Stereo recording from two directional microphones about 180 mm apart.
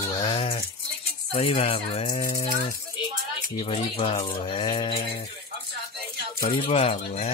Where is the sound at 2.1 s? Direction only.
50° left (ahead or behind).